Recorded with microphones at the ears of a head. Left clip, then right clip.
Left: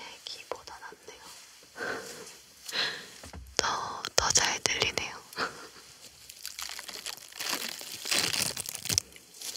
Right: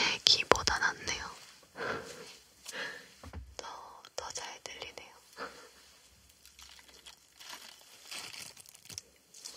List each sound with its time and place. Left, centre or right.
0.0 s whispering: right
2.7 s a sound: left
3.5 s whispering: left
6.4 s crumpling: left